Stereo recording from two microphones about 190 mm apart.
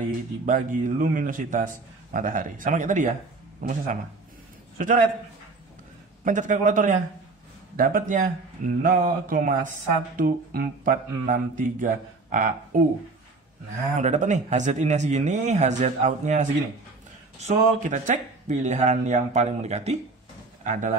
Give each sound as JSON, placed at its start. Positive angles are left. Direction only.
{"t": 0.5, "sound": "a man's voice", "side_deg": -45}
{"t": 6.2, "sound": "speech", "side_deg": -40}
{"t": 13.9, "sound": "a man's voice", "side_deg": -40}